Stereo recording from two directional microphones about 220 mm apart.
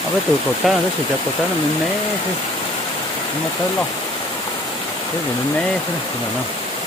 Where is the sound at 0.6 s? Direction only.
Centre (ahead or behind).